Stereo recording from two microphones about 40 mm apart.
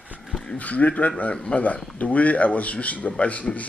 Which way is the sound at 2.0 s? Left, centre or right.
Left.